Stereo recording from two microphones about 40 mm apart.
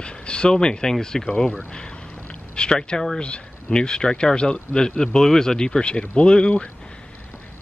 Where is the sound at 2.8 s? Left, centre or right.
Centre.